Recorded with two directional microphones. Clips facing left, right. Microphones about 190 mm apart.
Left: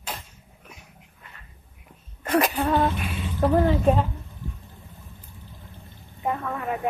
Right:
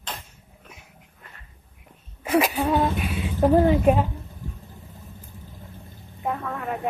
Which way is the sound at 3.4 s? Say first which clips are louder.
Right 3 dB; 15° right (ahead or behind).